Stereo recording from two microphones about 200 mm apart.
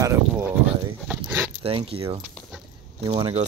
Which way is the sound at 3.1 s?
30° right (ahead or behind).